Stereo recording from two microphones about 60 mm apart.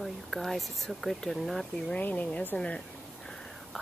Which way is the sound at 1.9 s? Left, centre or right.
Left.